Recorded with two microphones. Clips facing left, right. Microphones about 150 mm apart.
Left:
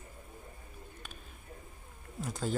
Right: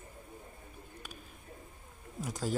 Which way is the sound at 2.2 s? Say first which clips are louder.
Even; 5° right (ahead or behind).